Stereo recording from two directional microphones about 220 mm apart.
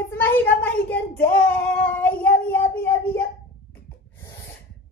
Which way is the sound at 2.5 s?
10° left (ahead or behind).